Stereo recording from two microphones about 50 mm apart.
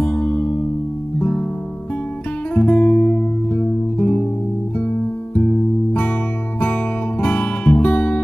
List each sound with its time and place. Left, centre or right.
0.0 s music: left
2.5 s music: left